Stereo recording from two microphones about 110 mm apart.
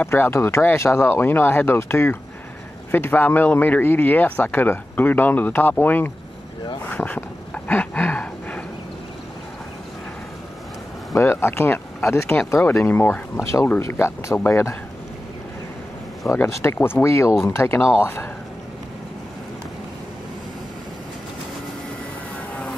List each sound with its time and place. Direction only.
0.0 s speech: 20° left (ahead or behind)
6.9 s a sound: 15° left (ahead or behind)
11.1 s speech: 25° left (ahead or behind)
16.3 s speech: 25° left (ahead or behind)